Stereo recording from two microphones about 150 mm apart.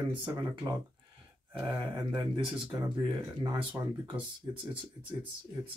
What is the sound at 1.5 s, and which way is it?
Speech, 30° right (ahead or behind).